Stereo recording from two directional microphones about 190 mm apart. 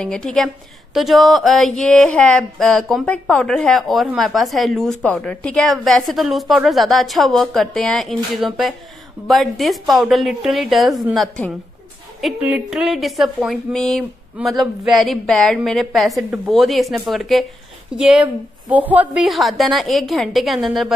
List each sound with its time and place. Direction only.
0.0 s speech: 5° left (ahead or behind)